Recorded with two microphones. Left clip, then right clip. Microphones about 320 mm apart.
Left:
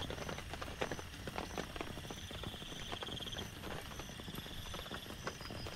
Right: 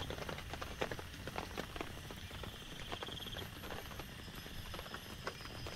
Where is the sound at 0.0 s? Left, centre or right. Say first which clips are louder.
Left 1 dB; centre.